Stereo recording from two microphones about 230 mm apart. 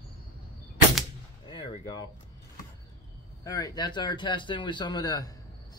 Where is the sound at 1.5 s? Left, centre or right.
Centre.